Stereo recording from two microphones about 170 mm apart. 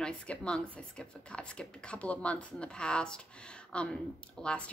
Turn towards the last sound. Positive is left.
turn(degrees=5)  # may be behind; listen again after turning